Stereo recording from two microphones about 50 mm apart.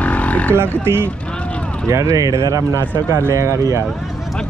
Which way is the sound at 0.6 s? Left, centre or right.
Right.